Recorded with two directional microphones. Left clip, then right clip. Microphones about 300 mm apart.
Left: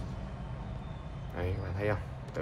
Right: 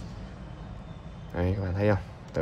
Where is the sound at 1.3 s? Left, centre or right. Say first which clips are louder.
Right 7 dB; right.